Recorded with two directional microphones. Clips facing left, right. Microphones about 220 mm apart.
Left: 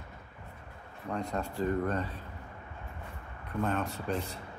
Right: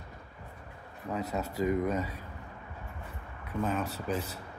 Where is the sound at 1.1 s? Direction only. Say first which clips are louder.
Right 1 dB; 5° right (ahead or behind).